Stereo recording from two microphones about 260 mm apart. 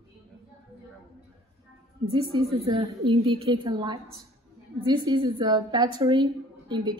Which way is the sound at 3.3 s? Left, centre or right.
Centre.